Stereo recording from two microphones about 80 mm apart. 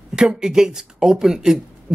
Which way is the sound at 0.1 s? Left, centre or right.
Centre.